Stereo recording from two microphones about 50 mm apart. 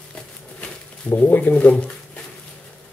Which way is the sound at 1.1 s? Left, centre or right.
Left.